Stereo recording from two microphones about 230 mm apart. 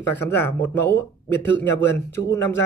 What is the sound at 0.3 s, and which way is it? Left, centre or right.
Speech, centre.